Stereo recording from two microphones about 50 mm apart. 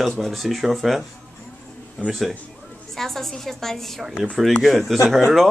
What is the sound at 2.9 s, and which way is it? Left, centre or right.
A woman's voice, centre.